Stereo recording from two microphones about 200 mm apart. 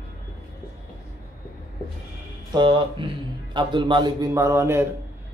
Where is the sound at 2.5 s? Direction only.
25° right (ahead or behind).